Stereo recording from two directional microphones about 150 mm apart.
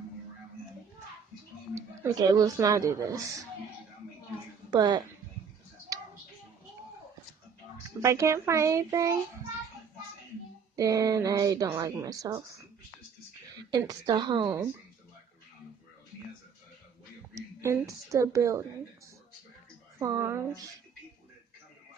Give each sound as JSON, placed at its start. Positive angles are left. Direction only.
{"t": 1.8, "sound": "speech", "side_deg": -25}
{"t": 4.6, "sound": "a child's voice", "side_deg": -25}
{"t": 8.0, "sound": "speech", "side_deg": -20}
{"t": 10.8, "sound": "speech", "side_deg": -20}
{"t": 13.7, "sound": "speech", "side_deg": -25}
{"t": 17.3, "sound": "a woman's voice", "side_deg": -20}
{"t": 20.0, "sound": "speech", "side_deg": -20}